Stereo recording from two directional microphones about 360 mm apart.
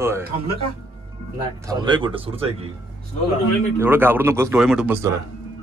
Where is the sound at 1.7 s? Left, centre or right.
Centre.